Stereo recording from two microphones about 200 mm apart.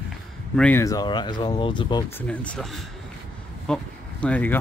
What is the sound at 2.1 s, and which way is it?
Speech, 10° left (ahead or behind).